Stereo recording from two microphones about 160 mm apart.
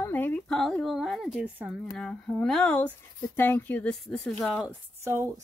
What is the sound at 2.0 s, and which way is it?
Speech, 5° left (ahead or behind).